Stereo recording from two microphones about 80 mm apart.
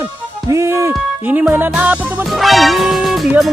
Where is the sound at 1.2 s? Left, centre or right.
Right.